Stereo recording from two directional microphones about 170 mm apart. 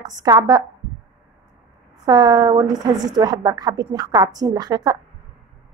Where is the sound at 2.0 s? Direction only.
25° right (ahead or behind).